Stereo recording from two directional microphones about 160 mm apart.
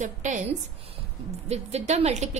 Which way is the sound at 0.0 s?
50° right (ahead or behind).